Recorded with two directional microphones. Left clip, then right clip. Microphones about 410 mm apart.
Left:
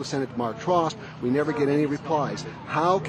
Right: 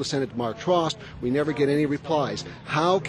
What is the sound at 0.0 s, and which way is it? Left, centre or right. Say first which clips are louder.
Speech: right 1 dB; right.